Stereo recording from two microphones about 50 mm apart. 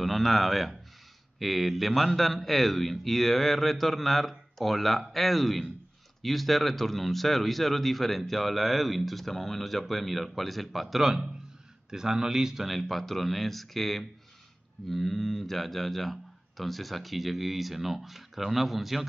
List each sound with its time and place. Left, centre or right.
0.0 s a man's voice: centre